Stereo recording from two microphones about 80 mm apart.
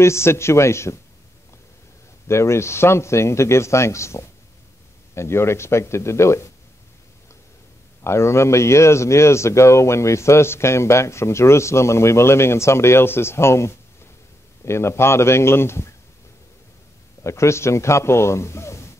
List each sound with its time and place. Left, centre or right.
0.0 s a man's voice: left
2.2 s a man's voice: left
8.0 s a man's voice: left
17.2 s a man's voice: left